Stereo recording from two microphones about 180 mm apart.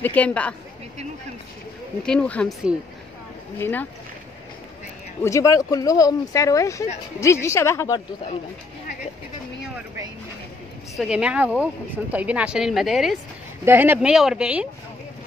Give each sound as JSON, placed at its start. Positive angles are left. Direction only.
{"t": 0.0, "sound": "speech", "side_deg": 10}
{"t": 2.0, "sound": "speech", "side_deg": 5}
{"t": 3.5, "sound": "speech", "side_deg": 15}
{"t": 5.2, "sound": "speech", "side_deg": 15}
{"t": 11.0, "sound": "speech", "side_deg": -5}